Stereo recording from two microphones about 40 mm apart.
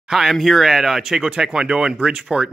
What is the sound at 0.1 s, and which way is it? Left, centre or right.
Speech, centre.